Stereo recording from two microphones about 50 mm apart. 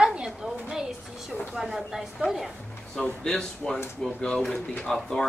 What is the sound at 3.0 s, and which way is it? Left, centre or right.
A woman's voice, centre.